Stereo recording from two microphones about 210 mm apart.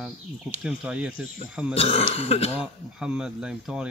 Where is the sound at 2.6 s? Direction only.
5° right (ahead or behind).